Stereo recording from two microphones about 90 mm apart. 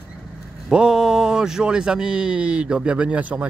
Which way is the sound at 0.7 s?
5° right (ahead or behind).